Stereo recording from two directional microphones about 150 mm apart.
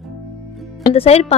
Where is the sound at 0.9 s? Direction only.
45° left (ahead or behind).